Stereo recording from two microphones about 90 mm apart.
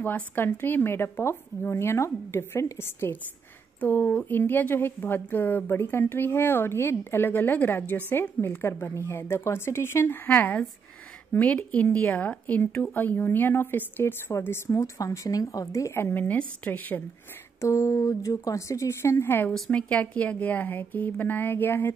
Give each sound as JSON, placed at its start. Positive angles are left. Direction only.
{"t": 0.0, "sound": "speech", "side_deg": 20}
{"t": 17.6, "sound": "a woman's voice", "side_deg": 35}
{"t": 19.5, "sound": "speech", "side_deg": 15}